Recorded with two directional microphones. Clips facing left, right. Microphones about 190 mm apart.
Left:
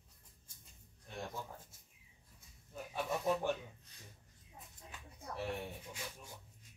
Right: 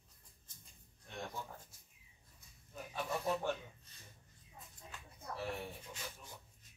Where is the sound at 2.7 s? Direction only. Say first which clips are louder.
Left 2 dB; 10° left (ahead or behind).